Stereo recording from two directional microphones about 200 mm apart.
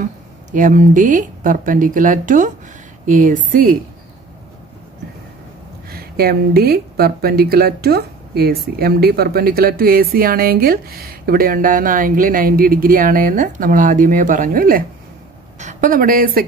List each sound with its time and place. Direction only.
0.0 s speech: 40° right (ahead or behind)
5.9 s speech: 50° right (ahead or behind)